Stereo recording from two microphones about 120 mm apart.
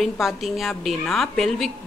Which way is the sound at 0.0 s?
Centre (ahead or behind).